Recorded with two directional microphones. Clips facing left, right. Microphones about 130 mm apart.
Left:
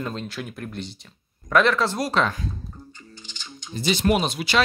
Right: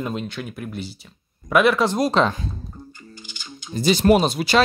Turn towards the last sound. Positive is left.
turn(degrees=-40)  # may be behind; listen again after turning